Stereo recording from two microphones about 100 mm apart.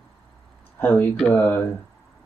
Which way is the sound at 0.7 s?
20° left (ahead or behind).